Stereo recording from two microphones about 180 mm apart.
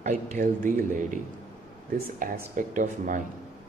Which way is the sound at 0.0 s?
45° right (ahead or behind).